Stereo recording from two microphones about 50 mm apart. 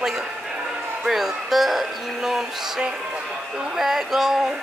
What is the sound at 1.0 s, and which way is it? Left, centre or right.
Speech, centre.